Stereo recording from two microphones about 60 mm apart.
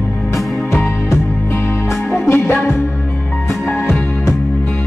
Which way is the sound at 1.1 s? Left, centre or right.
Left.